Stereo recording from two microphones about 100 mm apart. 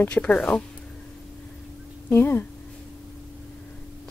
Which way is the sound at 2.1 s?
20° left (ahead or behind).